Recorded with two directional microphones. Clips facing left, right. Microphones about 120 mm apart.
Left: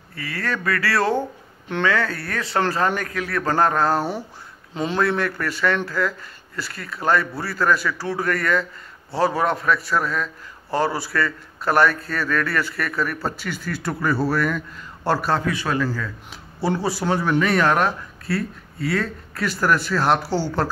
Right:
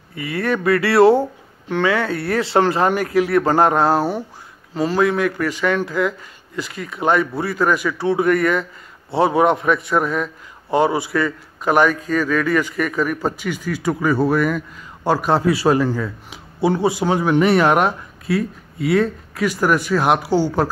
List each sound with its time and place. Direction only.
0.1 s speech: 20° right (ahead or behind)
2.6 s a man's voice: 15° right (ahead or behind)
4.7 s a man's voice: 5° right (ahead or behind)
15.3 s a man's voice: 30° right (ahead or behind); by 20.2 s 15° right (ahead or behind)
20.2 s speech: 45° right (ahead or behind)